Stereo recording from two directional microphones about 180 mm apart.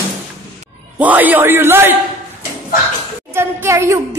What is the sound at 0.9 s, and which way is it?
A woman's voice, 10° right (ahead or behind).